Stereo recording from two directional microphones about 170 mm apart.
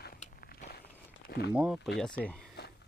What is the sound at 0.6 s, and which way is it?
Walk, 45° left (ahead or behind).